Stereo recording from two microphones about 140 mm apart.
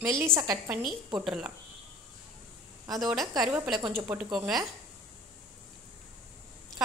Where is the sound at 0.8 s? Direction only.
5° right (ahead or behind).